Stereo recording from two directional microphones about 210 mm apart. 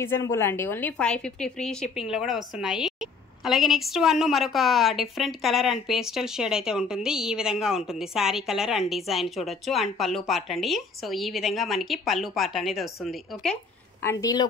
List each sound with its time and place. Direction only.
0.0 s a woman's voice: 10° left (ahead or behind)
14.0 s speech: 15° left (ahead or behind)